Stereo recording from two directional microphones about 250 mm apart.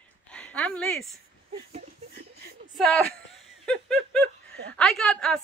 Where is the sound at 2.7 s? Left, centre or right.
Centre.